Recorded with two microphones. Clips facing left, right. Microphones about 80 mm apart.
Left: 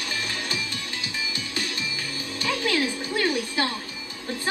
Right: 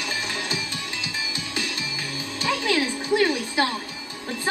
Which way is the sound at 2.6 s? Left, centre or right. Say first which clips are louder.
Right 3 dB; right.